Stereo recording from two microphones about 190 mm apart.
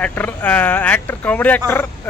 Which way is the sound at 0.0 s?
10° left (ahead or behind).